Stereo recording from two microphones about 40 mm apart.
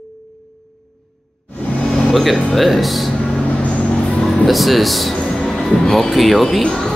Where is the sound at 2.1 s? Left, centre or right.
Centre.